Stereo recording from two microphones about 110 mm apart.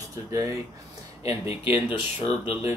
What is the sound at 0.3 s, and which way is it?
Speech, 30° right (ahead or behind).